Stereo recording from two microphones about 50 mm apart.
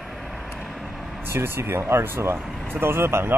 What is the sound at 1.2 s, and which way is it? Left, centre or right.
Speech, right.